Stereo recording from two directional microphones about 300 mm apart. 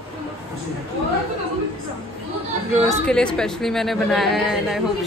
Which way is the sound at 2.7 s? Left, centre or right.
Centre.